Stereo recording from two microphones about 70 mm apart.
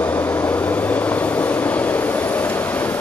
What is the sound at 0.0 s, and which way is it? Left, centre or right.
Vehicle, left.